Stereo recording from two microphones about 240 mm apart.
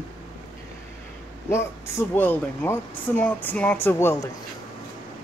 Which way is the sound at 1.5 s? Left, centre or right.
Centre.